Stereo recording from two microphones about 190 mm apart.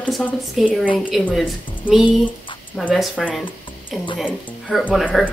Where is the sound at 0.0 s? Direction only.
5° left (ahead or behind).